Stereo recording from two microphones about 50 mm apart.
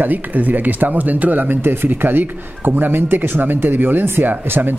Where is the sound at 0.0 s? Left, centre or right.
Right.